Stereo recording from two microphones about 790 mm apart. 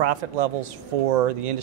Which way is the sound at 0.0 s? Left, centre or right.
Right.